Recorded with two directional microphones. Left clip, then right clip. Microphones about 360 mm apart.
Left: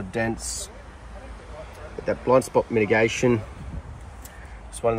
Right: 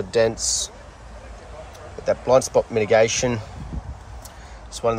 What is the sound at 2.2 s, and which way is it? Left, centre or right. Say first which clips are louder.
Speech: right 2 dB; right.